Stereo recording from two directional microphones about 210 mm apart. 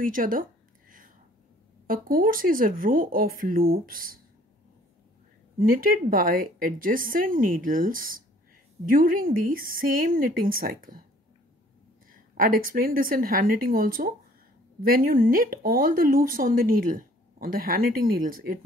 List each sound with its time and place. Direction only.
0.0 s a sound: 40° right (ahead or behind)
1.9 s a woman's voice: 40° right (ahead or behind)
5.6 s a woman's voice: 40° right (ahead or behind)
12.1 s speech: 40° right (ahead or behind)